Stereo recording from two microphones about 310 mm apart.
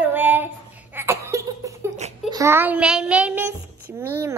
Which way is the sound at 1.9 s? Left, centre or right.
Right.